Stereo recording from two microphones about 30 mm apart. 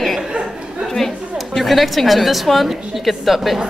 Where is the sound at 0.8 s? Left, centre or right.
Centre.